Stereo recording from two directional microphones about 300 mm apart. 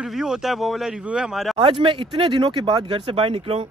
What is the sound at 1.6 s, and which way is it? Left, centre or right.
Speech, centre.